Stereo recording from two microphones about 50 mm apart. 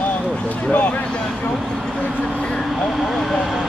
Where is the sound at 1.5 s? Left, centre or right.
Centre.